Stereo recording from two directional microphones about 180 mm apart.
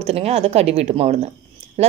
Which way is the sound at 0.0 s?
35° right (ahead or behind).